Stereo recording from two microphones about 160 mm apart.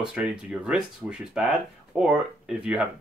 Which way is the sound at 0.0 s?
5° right (ahead or behind).